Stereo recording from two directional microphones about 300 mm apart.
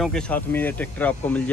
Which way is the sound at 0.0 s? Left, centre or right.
Centre.